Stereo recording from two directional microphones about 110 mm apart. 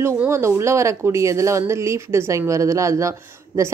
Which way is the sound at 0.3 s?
25° right (ahead or behind).